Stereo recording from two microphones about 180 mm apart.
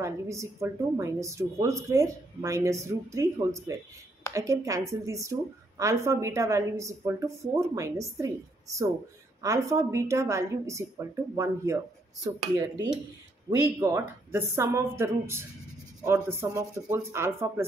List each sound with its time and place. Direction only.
0.0 s a woman's voice: 15° right (ahead or behind)